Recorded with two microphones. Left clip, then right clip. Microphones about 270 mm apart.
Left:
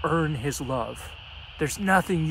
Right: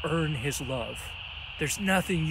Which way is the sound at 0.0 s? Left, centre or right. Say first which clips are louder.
Left 4 dB; centre.